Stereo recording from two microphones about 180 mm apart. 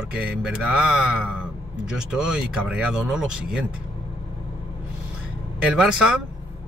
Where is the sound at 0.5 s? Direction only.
5° right (ahead or behind).